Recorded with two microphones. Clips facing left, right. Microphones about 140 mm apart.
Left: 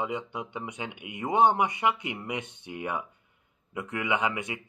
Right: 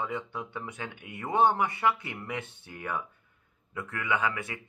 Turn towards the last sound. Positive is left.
turn(degrees=15)  # may be behind; listen again after turning